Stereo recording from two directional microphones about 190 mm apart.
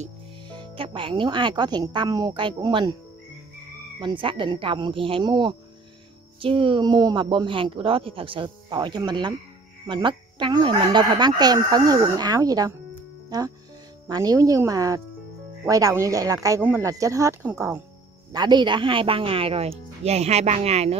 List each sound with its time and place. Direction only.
0.5 s speech: 25° right (ahead or behind)
4.0 s speech: 25° right (ahead or behind); by 17.7 s 10° right (ahead or behind)
18.3 s speech: 20° right (ahead or behind)